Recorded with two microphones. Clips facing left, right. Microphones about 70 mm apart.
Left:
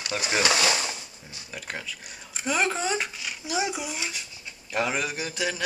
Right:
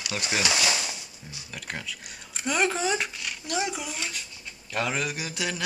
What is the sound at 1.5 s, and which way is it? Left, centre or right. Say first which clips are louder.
Speech: left 1 dB; centre.